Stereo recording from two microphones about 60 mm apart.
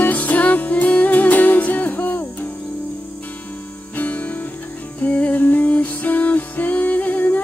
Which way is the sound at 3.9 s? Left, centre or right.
Left.